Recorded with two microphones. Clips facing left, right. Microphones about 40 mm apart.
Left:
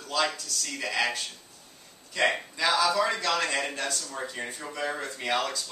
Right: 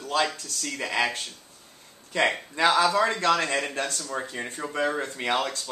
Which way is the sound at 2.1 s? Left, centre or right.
Right.